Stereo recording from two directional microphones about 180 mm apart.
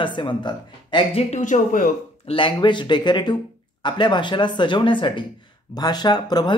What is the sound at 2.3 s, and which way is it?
Speech, 30° left (ahead or behind).